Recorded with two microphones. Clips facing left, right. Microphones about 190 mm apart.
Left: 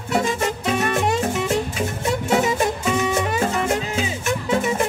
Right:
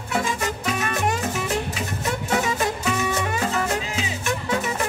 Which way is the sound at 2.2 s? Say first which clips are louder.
Left 4 dB; 25° left (ahead or behind).